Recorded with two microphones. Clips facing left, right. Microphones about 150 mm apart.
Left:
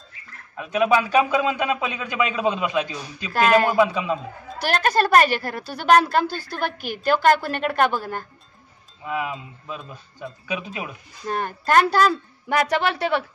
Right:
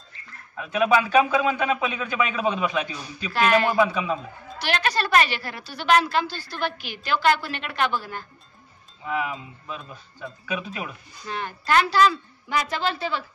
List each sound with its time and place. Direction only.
0.6 s a man's voice: 20° left (ahead or behind)
3.3 s a woman's voice: 40° left (ahead or behind)
3.8 s a man's voice: 20° left (ahead or behind)
4.6 s a woman's voice: 45° left (ahead or behind)
9.0 s a man's voice: 20° left (ahead or behind)
11.2 s a woman's voice: 45° left (ahead or behind); by 13.2 s 65° left (ahead or behind)